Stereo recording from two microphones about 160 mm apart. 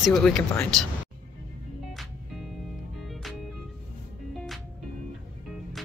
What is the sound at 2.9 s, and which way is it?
Music, centre (ahead or behind).